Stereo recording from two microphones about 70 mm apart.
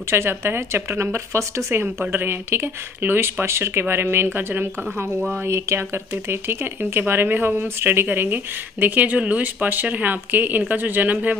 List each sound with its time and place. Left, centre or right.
0.1 s speech: right
6.8 s speech: right